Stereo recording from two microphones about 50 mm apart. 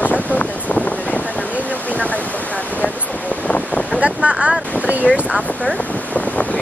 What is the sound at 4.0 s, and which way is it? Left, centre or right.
Wind noise, right.